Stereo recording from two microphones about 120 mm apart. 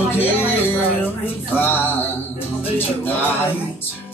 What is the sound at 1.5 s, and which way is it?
Music, 15° left (ahead or behind).